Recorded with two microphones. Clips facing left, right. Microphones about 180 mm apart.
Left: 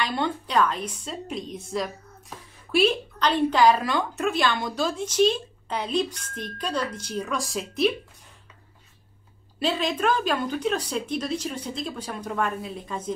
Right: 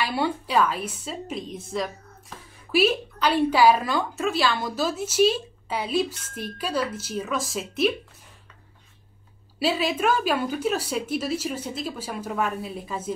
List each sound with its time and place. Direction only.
0.0 s a woman's voice: 10° right (ahead or behind)
9.6 s a woman's voice: 5° right (ahead or behind)